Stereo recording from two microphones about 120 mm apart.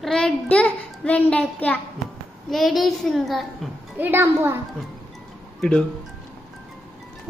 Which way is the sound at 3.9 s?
15° right (ahead or behind).